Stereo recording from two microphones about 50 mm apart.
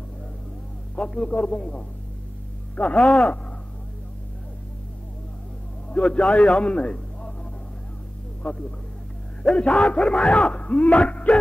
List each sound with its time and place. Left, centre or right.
0.9 s speech: centre
5.9 s a man's voice: left
8.4 s speech: left